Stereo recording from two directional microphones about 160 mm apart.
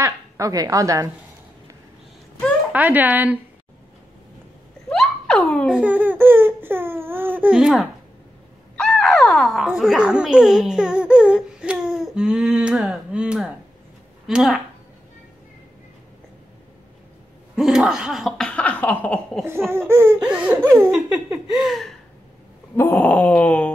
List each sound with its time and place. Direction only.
0.0 s speech: 20° right (ahead or behind)
2.7 s baby cry: 10° right (ahead or behind)
4.8 s giggle: 5° left (ahead or behind)
5.8 s baby cry: 10° right (ahead or behind)
8.7 s speech: 5° left (ahead or behind)
17.6 s speech: 5° right (ahead or behind)
19.7 s baby cry: 15° right (ahead or behind)
20.9 s speech: 5° right (ahead or behind)
22.8 s wail: 10° left (ahead or behind)